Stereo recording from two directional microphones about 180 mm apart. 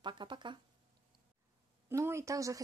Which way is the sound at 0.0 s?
25° right (ahead or behind).